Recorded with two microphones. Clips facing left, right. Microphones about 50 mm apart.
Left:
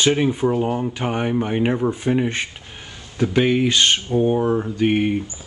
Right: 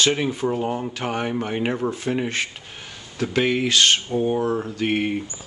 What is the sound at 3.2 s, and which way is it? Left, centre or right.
A man's voice, centre.